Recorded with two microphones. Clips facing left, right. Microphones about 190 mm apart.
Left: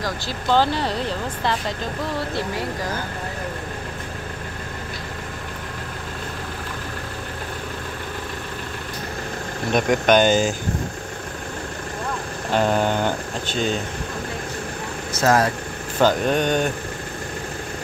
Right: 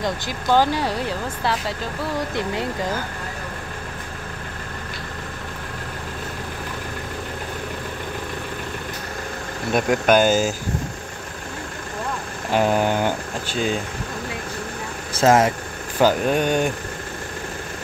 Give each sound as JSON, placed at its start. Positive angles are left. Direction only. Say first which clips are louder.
{"t": 0.5, "sound": "speech", "louder": "right 1 dB", "side_deg": -10}
{"t": 2.3, "sound": "speech", "louder": "right 1 dB", "side_deg": -20}
{"t": 9.7, "sound": "speech", "louder": "even", "side_deg": -5}
{"t": 12.5, "sound": "speech", "louder": "right 1 dB", "side_deg": -10}
{"t": 15.1, "sound": "speech", "louder": "right 3 dB", "side_deg": -25}
{"t": 16.0, "sound": "speech", "louder": "right 1 dB", "side_deg": -10}